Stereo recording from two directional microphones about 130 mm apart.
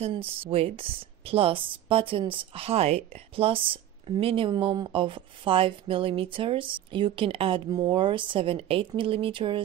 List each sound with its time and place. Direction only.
0.0 s a woman's voice: 45° right (ahead or behind)